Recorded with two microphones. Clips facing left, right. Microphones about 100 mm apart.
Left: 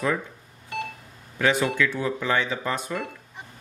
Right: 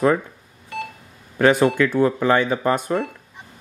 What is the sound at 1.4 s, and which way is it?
Speech, 50° right (ahead or behind).